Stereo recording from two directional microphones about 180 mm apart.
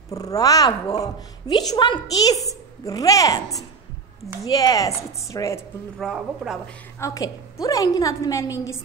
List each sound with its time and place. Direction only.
0.1 s a child's voice: 20° left (ahead or behind)
5.9 s speech: centre (ahead or behind)
7.0 s a woman's voice: 20° left (ahead or behind)